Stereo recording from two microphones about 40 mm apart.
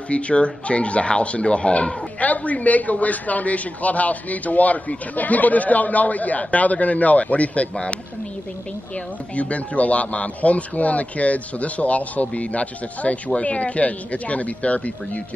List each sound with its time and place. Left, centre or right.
0.1 s speech: left
2.1 s a man's voice: left
7.7 s speech: left
9.3 s a man's voice: left